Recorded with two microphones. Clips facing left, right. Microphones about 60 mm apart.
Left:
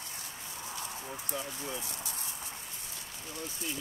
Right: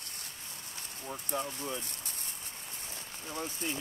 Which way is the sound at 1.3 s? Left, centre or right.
Right.